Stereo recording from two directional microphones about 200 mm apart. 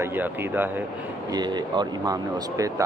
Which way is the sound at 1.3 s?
20° right (ahead or behind).